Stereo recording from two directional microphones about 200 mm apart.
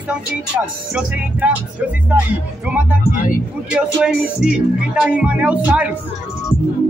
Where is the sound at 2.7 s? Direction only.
5° right (ahead or behind).